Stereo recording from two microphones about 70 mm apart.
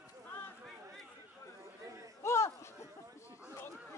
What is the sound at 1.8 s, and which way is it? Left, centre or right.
Chatter, right.